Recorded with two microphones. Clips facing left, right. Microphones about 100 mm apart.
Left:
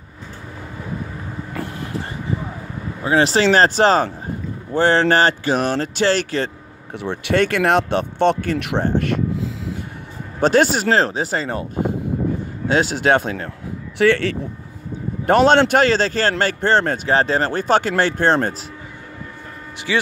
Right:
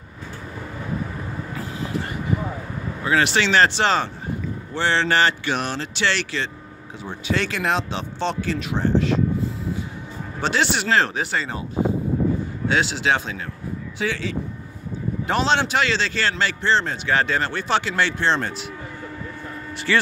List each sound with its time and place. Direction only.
1.5 s vehicle: 55° left (ahead or behind)
3.0 s a man's voice: 30° left (ahead or behind)
6.9 s speech: 65° left (ahead or behind)
10.4 s speech: 45° left (ahead or behind)
12.6 s a man's voice: 40° left (ahead or behind)
13.9 s speech: 65° left (ahead or behind)
15.2 s a man's voice: 50° left (ahead or behind)
17.1 s speech: 35° left (ahead or behind)
19.9 s speech: 10° left (ahead or behind)